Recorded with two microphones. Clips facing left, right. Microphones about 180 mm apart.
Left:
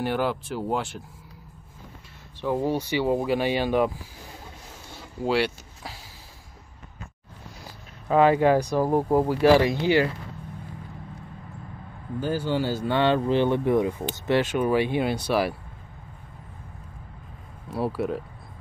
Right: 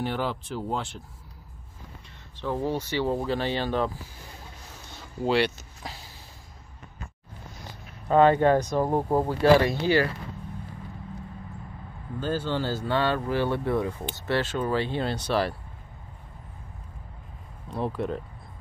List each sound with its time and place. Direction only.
0.0 s speech: 5° left (ahead or behind)
2.4 s speech: 15° left (ahead or behind)
4.8 s a sound: 5° left (ahead or behind)
8.1 s speech: 5° left (ahead or behind)
12.2 s speech: 10° left (ahead or behind)
17.6 s speech: 5° left (ahead or behind)